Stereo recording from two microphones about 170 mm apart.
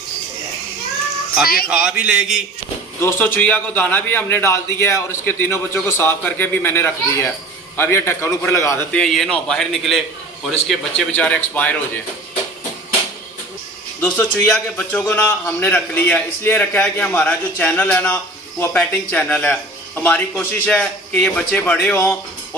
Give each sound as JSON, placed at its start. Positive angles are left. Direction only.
{"t": 1.4, "sound": "speech", "side_deg": 60}
{"t": 1.7, "sound": "a man's voice", "side_deg": -5}
{"t": 3.0, "sound": "a man's voice", "side_deg": 15}
{"t": 8.9, "sound": "a man's voice", "side_deg": 0}
{"t": 14.0, "sound": "a man's voice", "side_deg": 5}